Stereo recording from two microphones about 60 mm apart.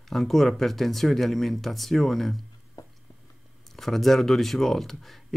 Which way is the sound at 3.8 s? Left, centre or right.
Centre.